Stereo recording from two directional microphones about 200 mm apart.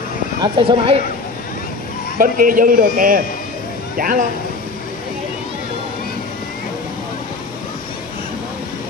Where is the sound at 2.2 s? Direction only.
45° right (ahead or behind).